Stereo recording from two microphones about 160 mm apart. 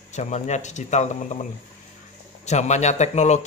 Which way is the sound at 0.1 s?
45° left (ahead or behind).